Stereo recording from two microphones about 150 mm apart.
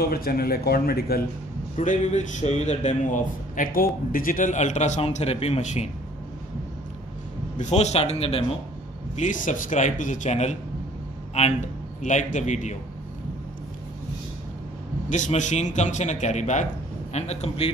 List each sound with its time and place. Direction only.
0.0 s speech: 80° left
1.8 s a man's voice: 55° left (ahead or behind)
7.5 s a man's voice: 50° left (ahead or behind)
9.1 s a man's voice: 60° left (ahead or behind)
12.0 s a man's voice: 55° left (ahead or behind)
15.0 s a man's voice: 55° left (ahead or behind)